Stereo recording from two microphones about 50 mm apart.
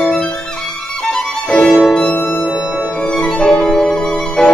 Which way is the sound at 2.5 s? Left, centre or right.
Centre.